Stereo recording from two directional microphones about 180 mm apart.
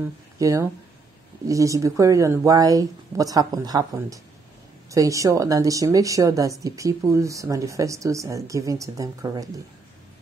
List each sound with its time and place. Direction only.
0.4 s speech: 20° right (ahead or behind)